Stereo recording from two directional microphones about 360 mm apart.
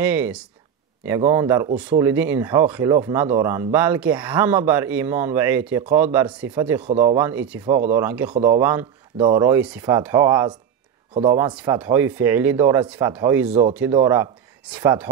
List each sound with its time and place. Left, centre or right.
0.0 s a man's voice: centre
6.9 s speech: centre
7.2 s a man's voice: centre
13.5 s speech: centre